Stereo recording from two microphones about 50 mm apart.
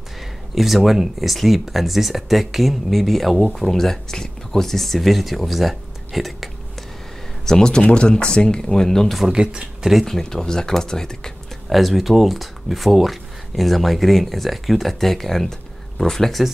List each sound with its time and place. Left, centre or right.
0.6 s speech: centre
7.4 s speech: centre
9.2 s speech: centre
9.8 s speech: centre
10.1 s speech: centre
11.7 s speech: centre